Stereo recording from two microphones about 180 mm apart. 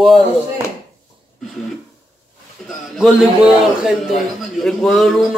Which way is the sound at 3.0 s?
Centre (ahead or behind).